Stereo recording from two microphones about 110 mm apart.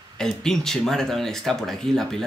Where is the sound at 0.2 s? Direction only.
5° left (ahead or behind).